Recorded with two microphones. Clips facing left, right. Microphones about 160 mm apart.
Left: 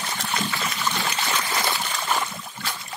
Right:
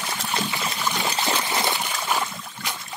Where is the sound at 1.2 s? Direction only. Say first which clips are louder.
Right 2 dB; 25° right (ahead or behind); by 2.7 s 10° right (ahead or behind).